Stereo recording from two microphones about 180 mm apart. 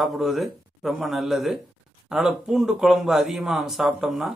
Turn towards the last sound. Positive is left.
turn(degrees=0)  # may be behind; listen again after turning